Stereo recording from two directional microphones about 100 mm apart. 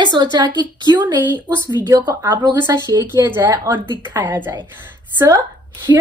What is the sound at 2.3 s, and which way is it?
A woman's voice, 40° right (ahead or behind).